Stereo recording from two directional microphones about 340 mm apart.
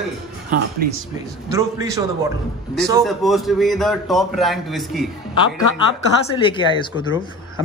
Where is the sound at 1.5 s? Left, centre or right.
Centre.